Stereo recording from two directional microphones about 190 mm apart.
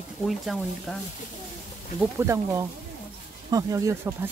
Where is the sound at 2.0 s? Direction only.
10° right (ahead or behind).